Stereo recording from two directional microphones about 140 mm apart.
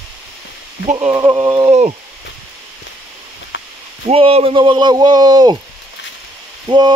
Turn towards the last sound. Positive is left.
turn(degrees=-30)  # may be behind; listen again after turning